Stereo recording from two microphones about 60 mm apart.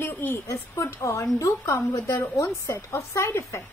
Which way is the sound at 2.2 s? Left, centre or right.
Left.